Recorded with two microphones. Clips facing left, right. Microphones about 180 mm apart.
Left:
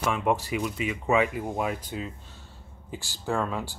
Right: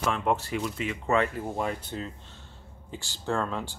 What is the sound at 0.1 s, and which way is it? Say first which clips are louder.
Speech: left 2 dB; 10° left (ahead or behind).